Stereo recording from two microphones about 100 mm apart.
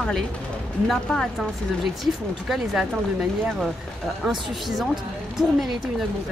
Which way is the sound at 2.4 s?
5° right (ahead or behind).